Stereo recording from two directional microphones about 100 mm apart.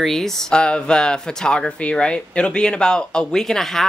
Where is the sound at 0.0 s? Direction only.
5° left (ahead or behind).